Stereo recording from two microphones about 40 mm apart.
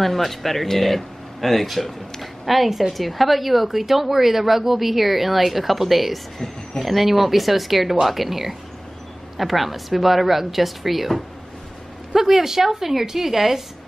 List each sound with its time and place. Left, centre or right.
0.0 s a woman's voice: centre